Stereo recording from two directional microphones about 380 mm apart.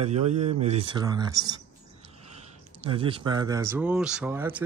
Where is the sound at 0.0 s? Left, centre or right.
Centre.